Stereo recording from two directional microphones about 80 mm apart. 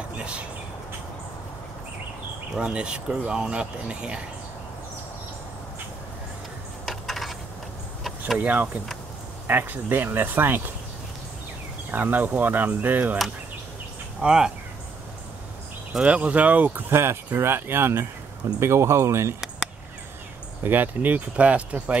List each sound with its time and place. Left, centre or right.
0.2 s speech: centre
2.5 s speech: centre
6.9 s coin: centre
8.4 s speech: centre
11.9 s speech: right
14.2 s speech: centre
16.0 s speech: centre; by 19.3 s right
20.6 s speech: right